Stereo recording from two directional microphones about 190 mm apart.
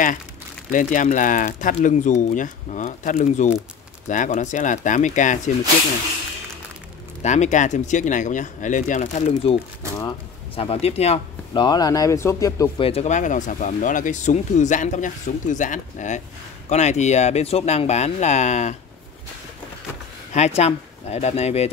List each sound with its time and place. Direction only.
0.7 s speech: 45° left (ahead or behind)
7.2 s speech: 40° left (ahead or behind)
9.9 s a sound: 20° left (ahead or behind)
10.6 s speech: 30° left (ahead or behind)
12.8 s speech: 35° left (ahead or behind)
20.3 s speech: 35° left (ahead or behind)